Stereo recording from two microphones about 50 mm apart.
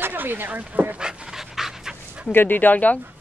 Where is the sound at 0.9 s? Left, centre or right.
Centre.